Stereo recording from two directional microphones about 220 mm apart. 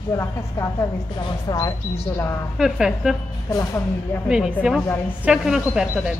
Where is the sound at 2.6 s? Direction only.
Centre (ahead or behind).